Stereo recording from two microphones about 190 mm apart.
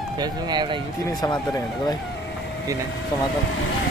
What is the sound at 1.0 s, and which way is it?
Speech, 15° left (ahead or behind).